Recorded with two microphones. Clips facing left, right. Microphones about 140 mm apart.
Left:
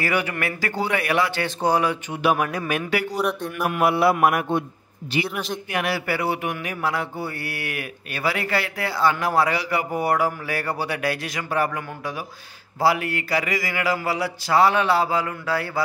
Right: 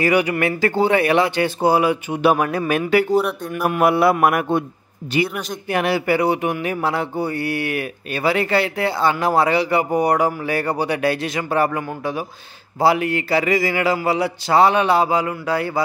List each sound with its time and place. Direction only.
0.0 s speech: 15° right (ahead or behind)
2.2 s speech: 30° right (ahead or behind)
3.2 s speech: 5° right (ahead or behind)
3.6 s speech: 45° right (ahead or behind)
5.7 s speech: 30° right (ahead or behind)